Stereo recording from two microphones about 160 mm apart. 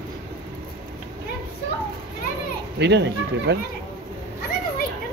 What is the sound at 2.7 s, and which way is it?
Speech, 90° right.